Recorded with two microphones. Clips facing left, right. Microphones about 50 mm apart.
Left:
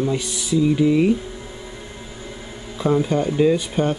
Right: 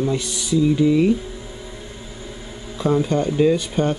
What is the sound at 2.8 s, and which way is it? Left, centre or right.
Speech, centre.